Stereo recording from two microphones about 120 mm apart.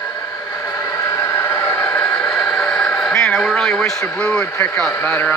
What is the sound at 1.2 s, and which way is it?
Vehicle, 20° left (ahead or behind).